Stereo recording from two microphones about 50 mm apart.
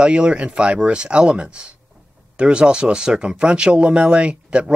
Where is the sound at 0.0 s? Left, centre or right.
Centre.